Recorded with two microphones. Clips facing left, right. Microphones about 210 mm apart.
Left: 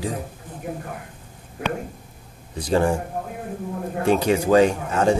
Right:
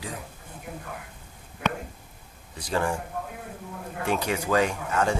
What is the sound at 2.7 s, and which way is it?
Speech, 30° left (ahead or behind).